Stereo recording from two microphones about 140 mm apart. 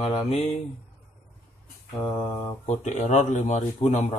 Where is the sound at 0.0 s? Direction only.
45° left (ahead or behind).